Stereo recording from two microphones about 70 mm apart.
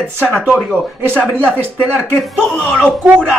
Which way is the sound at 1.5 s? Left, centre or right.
Centre.